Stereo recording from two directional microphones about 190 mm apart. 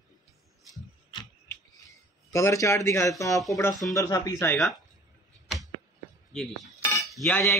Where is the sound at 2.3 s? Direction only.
15° left (ahead or behind).